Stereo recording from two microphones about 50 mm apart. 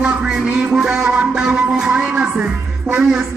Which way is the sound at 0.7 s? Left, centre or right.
Centre.